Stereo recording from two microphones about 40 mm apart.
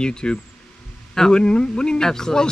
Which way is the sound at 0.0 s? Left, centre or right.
Left.